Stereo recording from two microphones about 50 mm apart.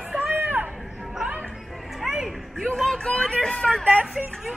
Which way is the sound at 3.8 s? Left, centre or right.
Right.